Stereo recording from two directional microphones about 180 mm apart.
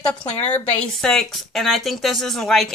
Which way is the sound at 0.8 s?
5° left (ahead or behind).